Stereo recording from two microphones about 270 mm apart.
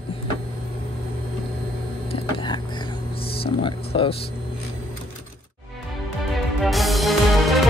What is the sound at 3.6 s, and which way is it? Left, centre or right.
Speech, centre.